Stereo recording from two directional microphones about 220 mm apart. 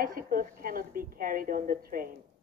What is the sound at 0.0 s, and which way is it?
Speech, 40° right (ahead or behind).